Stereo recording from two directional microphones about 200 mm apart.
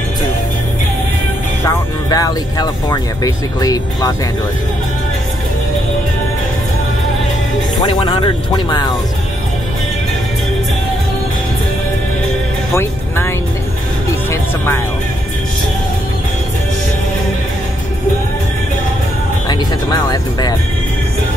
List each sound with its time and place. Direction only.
2.0 s speech: 20° left (ahead or behind)
7.8 s speech: 25° left (ahead or behind)
12.7 s music: 10° left (ahead or behind)
19.4 s speech: 20° left (ahead or behind)